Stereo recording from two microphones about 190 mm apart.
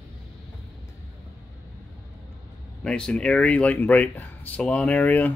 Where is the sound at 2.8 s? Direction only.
5° left (ahead or behind).